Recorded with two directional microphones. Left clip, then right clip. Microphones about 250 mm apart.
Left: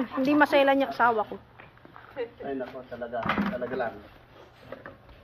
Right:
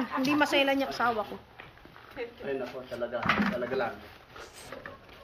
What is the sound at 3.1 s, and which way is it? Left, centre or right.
Speech, left.